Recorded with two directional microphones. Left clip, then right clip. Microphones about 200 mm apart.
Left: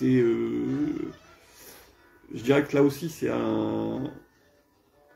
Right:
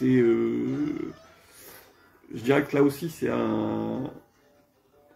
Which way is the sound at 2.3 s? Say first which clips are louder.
Even; 15° right (ahead or behind).